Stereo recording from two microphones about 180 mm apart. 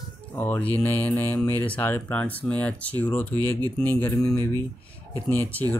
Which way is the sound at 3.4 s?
20° right (ahead or behind).